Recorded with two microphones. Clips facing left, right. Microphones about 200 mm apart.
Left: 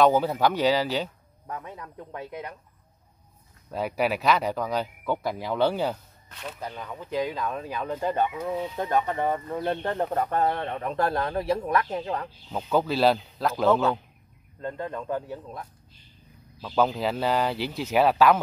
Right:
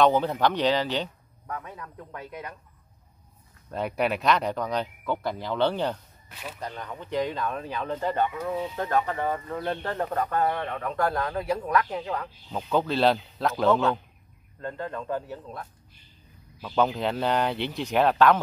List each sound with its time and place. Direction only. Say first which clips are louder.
0.0 s speech: left 1 dB; 5° left (ahead or behind)
1.5 s speech: even; 25° left (ahead or behind)
3.7 s speech: left 1 dB; 5° left (ahead or behind); by 12.3 s 25° left (ahead or behind)
12.4 s speech: left 1 dB; 5° left (ahead or behind)
14.6 s speech: left 1 dB; 20° left (ahead or behind)
16.6 s speech: left 1 dB; centre (ahead or behind)